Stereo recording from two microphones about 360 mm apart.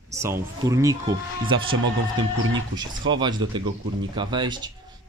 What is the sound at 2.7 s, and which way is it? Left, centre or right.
Speech, centre.